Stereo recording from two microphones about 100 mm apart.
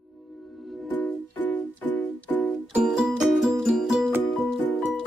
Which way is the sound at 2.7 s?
5° right (ahead or behind).